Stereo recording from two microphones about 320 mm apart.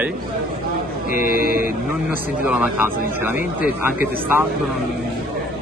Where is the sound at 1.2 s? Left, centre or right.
Left.